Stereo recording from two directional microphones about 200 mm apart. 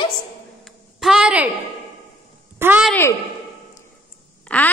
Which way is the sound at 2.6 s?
10° right (ahead or behind).